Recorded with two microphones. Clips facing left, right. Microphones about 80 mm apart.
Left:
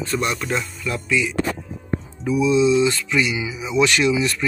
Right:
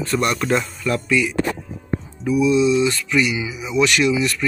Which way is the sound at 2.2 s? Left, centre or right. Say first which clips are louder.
Right 1 dB; left.